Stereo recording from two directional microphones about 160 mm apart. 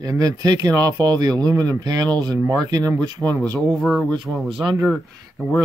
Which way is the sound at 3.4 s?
10° left (ahead or behind).